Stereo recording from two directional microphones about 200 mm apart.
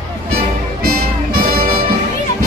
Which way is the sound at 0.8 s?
45° right (ahead or behind).